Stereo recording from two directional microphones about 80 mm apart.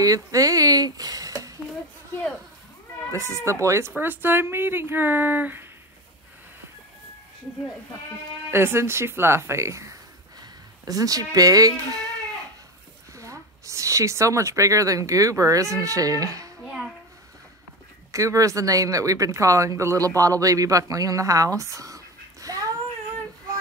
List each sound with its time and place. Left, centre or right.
0.0 s speech: right
3.3 s speech: right
3.9 s speech: right
8.5 s speech: right
10.9 s speech: right
13.1 s speech: right
18.1 s speech: right